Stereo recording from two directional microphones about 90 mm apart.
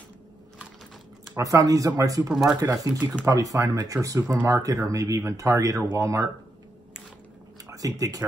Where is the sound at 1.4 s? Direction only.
40° right (ahead or behind).